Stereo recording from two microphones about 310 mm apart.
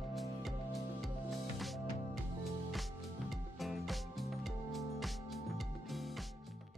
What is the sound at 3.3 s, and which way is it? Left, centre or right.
Music, centre.